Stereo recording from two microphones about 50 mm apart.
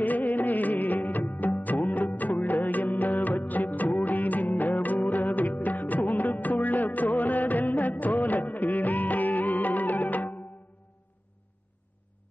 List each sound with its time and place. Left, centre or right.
0.0 s music: left